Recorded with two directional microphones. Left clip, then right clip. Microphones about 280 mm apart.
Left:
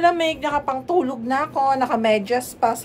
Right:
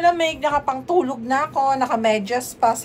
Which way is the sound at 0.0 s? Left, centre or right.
Centre.